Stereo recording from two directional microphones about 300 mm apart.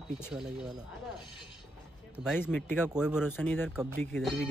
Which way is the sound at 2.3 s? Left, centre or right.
Centre.